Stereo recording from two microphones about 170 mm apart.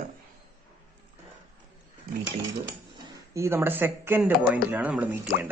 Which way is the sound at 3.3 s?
15° right (ahead or behind).